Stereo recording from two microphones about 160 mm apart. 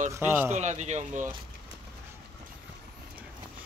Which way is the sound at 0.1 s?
15° right (ahead or behind).